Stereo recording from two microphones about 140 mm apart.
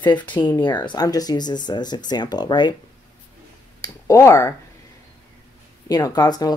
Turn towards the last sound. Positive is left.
turn(degrees=30)  # may be behind; listen again after turning